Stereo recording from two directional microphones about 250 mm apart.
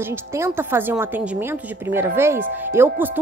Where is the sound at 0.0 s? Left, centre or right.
Centre.